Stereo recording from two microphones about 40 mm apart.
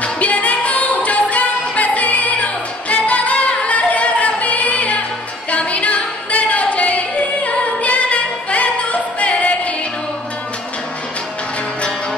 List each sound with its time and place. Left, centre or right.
0.0 s music: left
5.5 s yodeling: left